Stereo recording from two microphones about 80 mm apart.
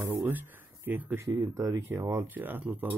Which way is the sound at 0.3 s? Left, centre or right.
Right.